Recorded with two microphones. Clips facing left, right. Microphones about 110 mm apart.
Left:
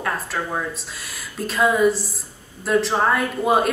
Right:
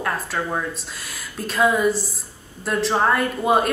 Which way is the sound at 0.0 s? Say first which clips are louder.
Right 1 dB; centre (ahead or behind).